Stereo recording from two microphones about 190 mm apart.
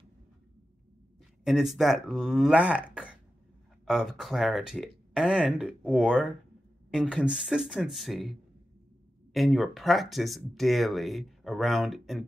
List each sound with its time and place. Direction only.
1.4 s speech: centre (ahead or behind)